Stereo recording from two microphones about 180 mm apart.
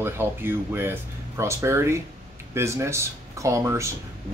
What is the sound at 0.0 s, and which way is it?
Speech, 10° right (ahead or behind).